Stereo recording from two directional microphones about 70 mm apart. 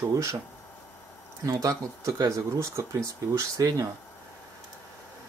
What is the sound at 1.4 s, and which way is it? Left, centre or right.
Speech, right.